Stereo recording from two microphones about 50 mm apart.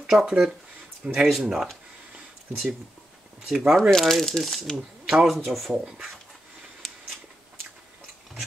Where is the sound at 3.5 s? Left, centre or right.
Centre.